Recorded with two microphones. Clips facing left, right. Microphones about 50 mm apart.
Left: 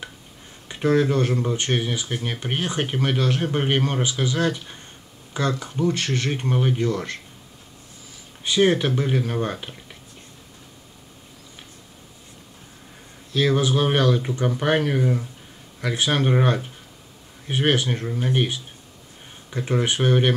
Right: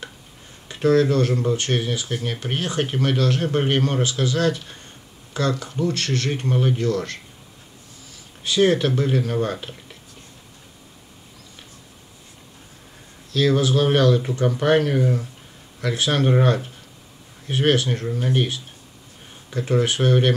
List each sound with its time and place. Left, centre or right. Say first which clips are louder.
0.7 s speech: right 2 dB; centre
8.5 s speech: right 1 dB; centre
13.3 s speech: right 1 dB; centre